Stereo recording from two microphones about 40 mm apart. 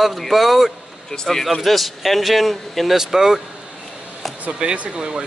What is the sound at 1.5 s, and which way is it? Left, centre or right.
Speech, centre.